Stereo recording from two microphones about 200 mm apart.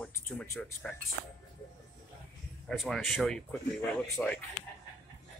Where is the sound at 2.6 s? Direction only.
Centre (ahead or behind).